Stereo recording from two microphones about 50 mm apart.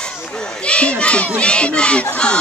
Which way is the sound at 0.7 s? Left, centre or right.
Left.